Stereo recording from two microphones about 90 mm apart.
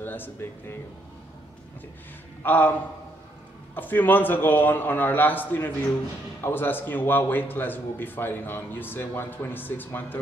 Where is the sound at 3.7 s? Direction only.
20° left (ahead or behind).